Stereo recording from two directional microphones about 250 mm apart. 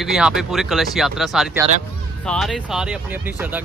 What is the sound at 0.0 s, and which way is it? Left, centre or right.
Speech, centre.